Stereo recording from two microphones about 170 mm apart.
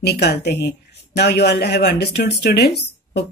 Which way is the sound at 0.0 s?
70° left (ahead or behind).